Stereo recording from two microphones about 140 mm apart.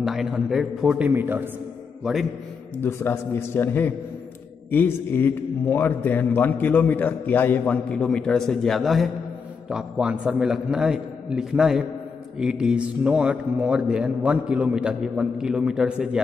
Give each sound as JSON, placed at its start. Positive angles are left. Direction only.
{"t": 0.0, "sound": "a man's voice", "side_deg": -5}
{"t": 2.0, "sound": "a man's voice", "side_deg": -5}
{"t": 2.8, "sound": "a man's voice", "side_deg": 15}